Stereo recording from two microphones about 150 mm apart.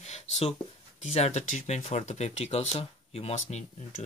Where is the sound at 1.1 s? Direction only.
50° left (ahead or behind).